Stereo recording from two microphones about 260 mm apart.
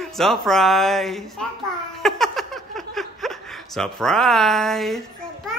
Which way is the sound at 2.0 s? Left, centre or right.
Centre.